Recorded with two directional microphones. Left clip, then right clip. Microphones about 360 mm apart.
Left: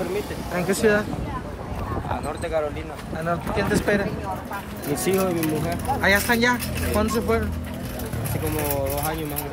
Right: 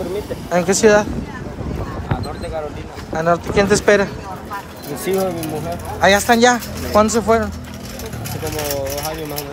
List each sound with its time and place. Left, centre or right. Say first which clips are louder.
0.6 s speech: right 8 dB; centre
3.2 s speech: right 10 dB; centre
5.0 s speech: right 3 dB; centre